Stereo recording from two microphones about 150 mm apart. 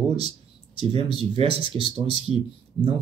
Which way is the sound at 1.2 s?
40° right (ahead or behind).